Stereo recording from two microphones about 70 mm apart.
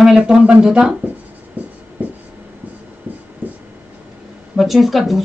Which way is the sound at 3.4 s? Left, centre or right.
Right.